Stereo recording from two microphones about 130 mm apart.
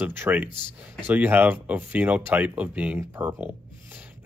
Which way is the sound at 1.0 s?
15° right (ahead or behind).